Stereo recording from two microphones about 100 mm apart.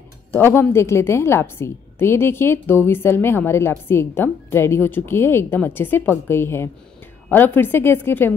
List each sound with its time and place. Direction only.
0.3 s a woman's voice: 25° left (ahead or behind)